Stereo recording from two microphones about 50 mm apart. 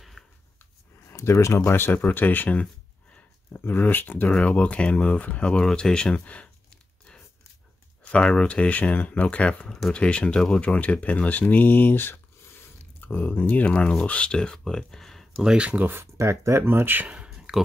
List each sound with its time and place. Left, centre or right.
0.2 s a sound: centre
1.0 s speech: left
2.0 s speech: left
4.3 s speech: left
5.4 s speech: centre
8.1 s speech: left; by 15.4 s centre
15.5 s speech: right
16.0 s speech: right
16.6 s speech: right
17.3 s a sound: centre